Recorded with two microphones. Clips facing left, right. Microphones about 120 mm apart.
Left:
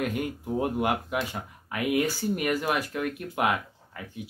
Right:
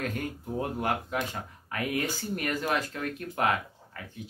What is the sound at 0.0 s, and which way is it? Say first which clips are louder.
Speech: left 4 dB; 15° left (ahead or behind).